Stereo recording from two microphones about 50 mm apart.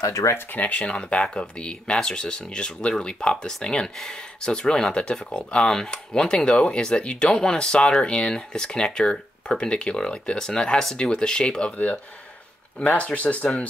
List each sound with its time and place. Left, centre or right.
0.0 s speech: left
0.5 s speech: left
12.7 s speech: left